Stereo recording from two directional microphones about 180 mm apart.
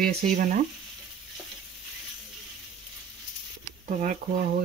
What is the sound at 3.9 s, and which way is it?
Speech, 45° right (ahead or behind).